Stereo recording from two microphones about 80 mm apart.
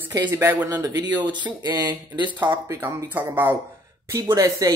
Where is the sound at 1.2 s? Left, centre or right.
Right.